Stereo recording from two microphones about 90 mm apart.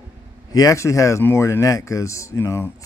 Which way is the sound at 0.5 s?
40° left (ahead or behind).